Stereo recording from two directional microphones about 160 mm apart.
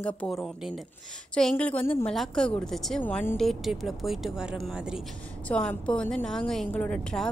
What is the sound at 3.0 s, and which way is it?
Speech, 15° left (ahead or behind).